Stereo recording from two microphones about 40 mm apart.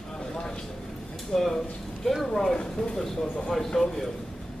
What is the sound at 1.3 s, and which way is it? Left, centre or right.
Speech, centre.